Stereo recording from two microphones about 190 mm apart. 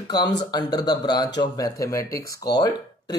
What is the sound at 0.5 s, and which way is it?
Speech, 20° left (ahead or behind).